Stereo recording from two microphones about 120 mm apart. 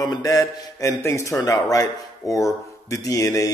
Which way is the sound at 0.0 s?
30° left (ahead or behind).